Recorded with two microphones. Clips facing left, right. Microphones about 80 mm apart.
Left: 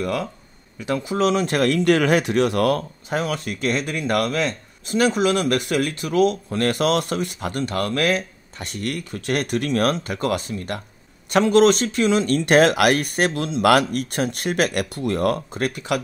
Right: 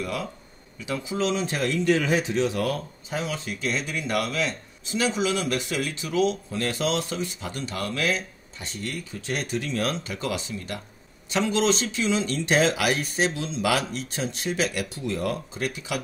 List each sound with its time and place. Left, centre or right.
0.0 s speech: left